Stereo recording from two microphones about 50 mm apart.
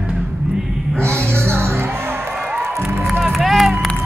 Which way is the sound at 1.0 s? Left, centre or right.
Right.